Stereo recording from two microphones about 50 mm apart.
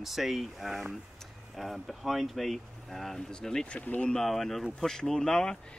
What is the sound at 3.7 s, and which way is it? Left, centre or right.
Speech, left.